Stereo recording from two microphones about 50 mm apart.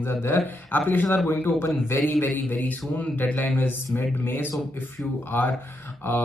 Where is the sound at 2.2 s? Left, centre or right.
Left.